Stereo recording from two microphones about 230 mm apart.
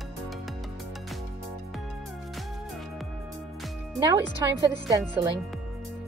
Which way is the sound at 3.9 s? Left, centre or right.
Centre.